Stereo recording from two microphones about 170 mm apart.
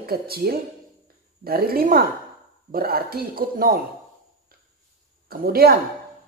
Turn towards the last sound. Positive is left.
turn(degrees=-65)  # may be behind; listen again after turning